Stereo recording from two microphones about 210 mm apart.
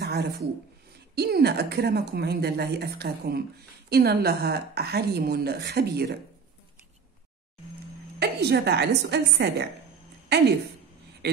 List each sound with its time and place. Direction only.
0.0 s a sound: 50° right (ahead or behind)
1.1 s a woman's voice: 50° right (ahead or behind)
8.2 s a woman's voice: 50° right (ahead or behind)